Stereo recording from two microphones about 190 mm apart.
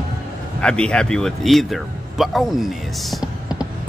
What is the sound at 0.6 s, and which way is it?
Speech, 5° left (ahead or behind).